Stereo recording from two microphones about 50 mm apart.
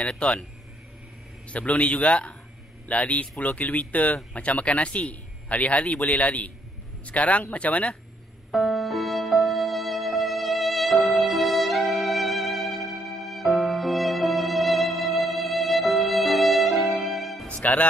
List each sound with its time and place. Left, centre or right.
1.5 s speech: left
8.5 s music: centre